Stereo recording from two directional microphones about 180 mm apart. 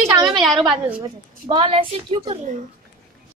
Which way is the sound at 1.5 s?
30° right (ahead or behind).